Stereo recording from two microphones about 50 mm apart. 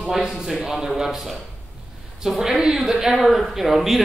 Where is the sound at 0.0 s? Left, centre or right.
Centre.